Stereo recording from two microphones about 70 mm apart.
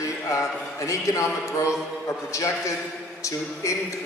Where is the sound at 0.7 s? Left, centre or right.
Left.